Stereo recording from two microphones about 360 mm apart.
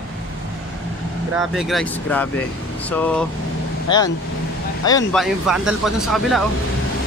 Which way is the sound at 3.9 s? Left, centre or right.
Centre.